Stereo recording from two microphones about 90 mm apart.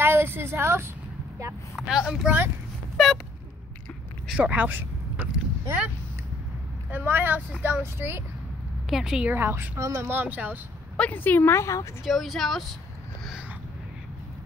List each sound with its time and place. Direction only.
0.0 s a sound: 25° right (ahead or behind)
1.8 s speech: 5° right (ahead or behind)
4.4 s a sound: 20° right (ahead or behind)
6.9 s speech: 20° right (ahead or behind)
8.9 s speech: 5° right (ahead or behind)
9.3 s speech: 25° right (ahead or behind)
9.8 s speech: 35° right (ahead or behind)
10.0 s speech: 20° right (ahead or behind)
11.0 s a woman's voice: 20° left (ahead or behind)
12.0 s speech: centre (ahead or behind)